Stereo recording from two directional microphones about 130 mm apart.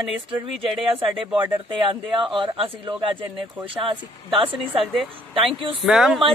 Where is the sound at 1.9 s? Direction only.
45° right (ahead or behind).